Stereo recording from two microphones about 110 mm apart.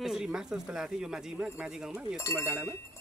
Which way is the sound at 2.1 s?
25° left (ahead or behind).